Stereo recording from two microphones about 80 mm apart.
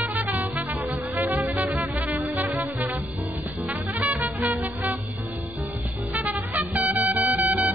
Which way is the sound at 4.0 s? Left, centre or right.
Right.